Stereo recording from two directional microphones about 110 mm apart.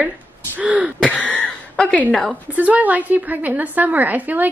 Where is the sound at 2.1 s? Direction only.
5° left (ahead or behind).